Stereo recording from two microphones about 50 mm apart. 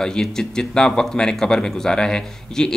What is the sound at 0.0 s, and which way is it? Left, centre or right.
Speech, centre.